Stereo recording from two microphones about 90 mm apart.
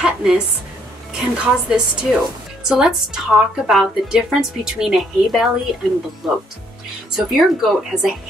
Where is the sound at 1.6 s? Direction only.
10° right (ahead or behind).